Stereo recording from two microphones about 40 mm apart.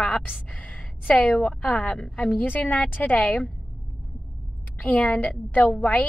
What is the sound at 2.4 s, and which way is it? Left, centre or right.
Speech, left.